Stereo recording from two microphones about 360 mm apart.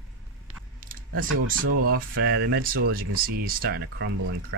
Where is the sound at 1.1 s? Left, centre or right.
Right.